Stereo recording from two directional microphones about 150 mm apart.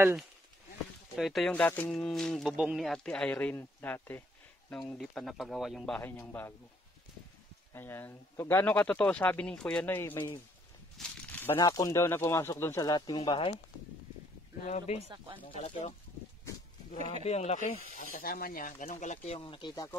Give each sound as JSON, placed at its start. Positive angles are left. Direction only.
{"t": 0.0, "sound": "speech", "side_deg": -5}
{"t": 5.9, "sound": "speech", "side_deg": 15}
{"t": 7.7, "sound": "speech", "side_deg": 15}
{"t": 11.0, "sound": "a sound", "side_deg": 10}
{"t": 11.5, "sound": "speech", "side_deg": 25}
{"t": 15.5, "sound": "speech", "side_deg": 45}
{"t": 17.2, "sound": "speech", "side_deg": 45}
{"t": 17.9, "sound": "speech", "side_deg": 65}